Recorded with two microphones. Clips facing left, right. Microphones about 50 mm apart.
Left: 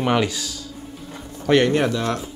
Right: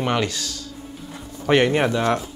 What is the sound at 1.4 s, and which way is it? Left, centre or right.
Speech, centre.